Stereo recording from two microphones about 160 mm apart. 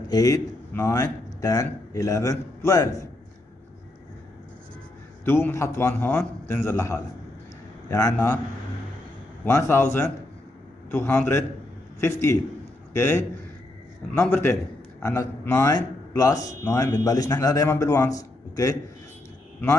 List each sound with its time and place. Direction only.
0.1 s a man's voice: 20° left (ahead or behind)
5.2 s a man's voice: 15° left (ahead or behind)
9.4 s a man's voice: 15° left (ahead or behind)